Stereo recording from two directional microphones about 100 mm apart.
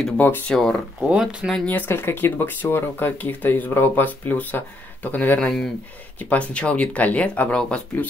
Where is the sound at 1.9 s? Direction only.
25° left (ahead or behind).